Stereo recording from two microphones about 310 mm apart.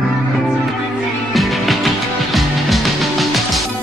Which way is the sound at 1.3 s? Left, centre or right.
Centre.